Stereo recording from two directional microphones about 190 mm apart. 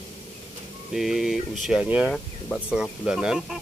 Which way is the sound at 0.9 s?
Centre (ahead or behind).